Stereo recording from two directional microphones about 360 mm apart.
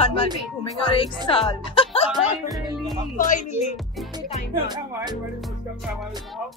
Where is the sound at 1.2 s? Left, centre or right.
Centre.